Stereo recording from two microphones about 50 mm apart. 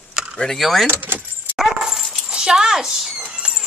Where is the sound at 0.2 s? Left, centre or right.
Centre.